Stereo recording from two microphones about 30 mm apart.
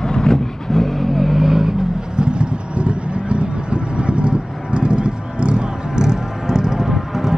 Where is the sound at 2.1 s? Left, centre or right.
Right.